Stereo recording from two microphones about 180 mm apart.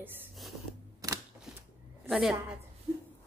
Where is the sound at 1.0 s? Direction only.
20° right (ahead or behind).